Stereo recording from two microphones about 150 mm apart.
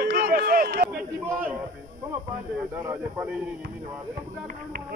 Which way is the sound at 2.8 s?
10° right (ahead or behind).